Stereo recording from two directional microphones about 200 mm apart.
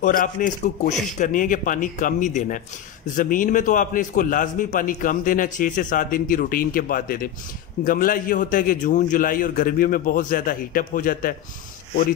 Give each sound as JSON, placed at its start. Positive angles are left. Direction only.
{"t": 0.0, "sound": "a man's voice", "side_deg": 40}